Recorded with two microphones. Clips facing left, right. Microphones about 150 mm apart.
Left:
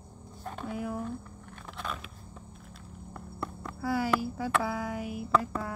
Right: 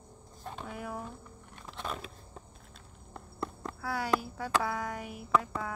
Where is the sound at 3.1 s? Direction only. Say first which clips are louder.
Even; 25° right (ahead or behind).